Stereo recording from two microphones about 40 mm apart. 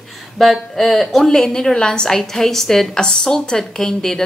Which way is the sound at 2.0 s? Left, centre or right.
Centre.